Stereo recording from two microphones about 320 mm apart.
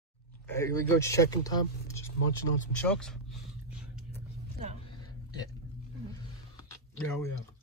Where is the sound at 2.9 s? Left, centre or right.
Centre.